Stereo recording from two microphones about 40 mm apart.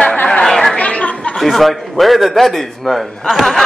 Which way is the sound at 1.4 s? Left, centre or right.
Centre.